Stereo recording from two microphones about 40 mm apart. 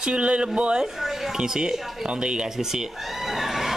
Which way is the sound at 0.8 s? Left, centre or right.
Centre.